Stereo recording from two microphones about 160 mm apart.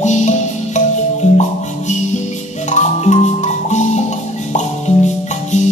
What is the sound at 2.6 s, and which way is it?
Music, 45° left (ahead or behind).